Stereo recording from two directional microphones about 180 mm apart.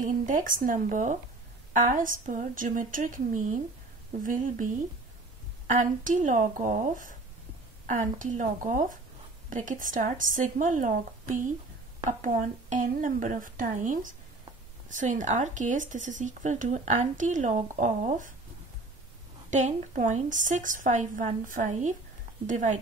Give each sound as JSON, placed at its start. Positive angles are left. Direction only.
{"t": 0.0, "sound": "speech", "side_deg": -45}
{"t": 5.7, "sound": "speech", "side_deg": -45}
{"t": 19.5, "sound": "speech", "side_deg": -45}